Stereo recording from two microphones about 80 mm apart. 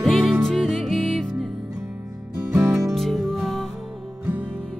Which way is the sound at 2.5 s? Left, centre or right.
Right.